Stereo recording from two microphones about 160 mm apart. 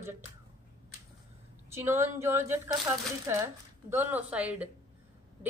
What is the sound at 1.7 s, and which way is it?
A woman's voice, 15° right (ahead or behind).